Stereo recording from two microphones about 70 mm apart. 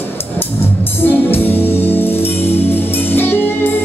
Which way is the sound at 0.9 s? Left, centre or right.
Left.